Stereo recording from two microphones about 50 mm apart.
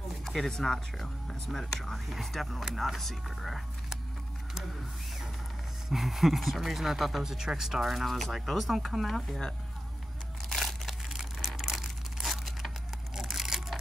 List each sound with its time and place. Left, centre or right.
0.2 s speech: centre
5.9 s speech: centre
10.6 s crumpling: centre